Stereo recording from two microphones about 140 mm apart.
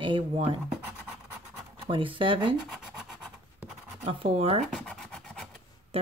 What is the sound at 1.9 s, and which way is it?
Speech, 35° right (ahead or behind).